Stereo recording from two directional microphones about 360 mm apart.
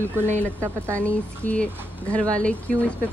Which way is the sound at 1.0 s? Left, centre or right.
Centre.